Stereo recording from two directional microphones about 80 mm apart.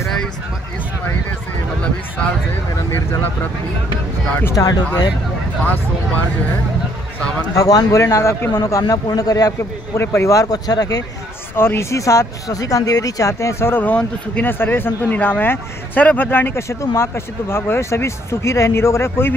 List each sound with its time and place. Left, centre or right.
1.8 s a sound: centre
4.6 s speech: left
7.5 s speech: left
9.9 s speech: left
11.5 s speech: left